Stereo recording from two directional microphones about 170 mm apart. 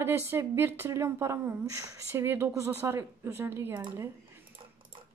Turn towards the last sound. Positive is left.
turn(degrees=-15)  # may be behind; listen again after turning